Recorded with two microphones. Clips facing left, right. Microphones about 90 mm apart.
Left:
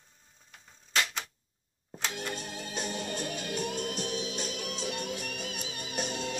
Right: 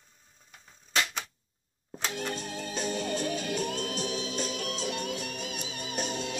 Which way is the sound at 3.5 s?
10° left (ahead or behind).